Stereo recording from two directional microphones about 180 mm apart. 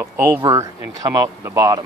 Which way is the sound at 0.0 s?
15° right (ahead or behind).